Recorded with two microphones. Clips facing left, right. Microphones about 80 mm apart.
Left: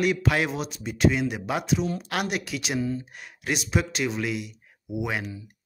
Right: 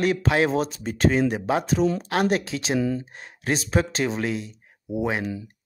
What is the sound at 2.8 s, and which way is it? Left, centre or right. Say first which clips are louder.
Speech: right 3 dB; right.